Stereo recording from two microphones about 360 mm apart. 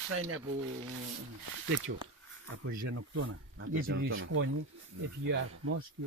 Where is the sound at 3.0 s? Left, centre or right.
Right.